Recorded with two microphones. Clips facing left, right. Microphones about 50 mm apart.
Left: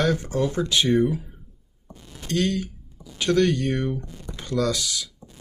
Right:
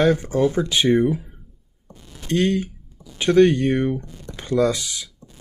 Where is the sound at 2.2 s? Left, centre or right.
Right.